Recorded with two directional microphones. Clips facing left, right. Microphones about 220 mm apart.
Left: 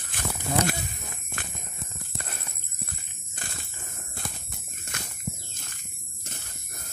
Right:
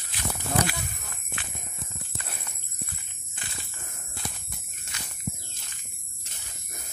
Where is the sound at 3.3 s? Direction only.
45° left (ahead or behind).